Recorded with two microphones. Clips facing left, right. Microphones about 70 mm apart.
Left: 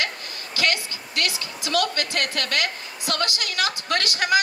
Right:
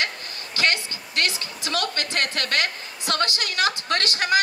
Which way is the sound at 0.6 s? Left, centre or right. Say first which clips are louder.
Right 1 dB; right.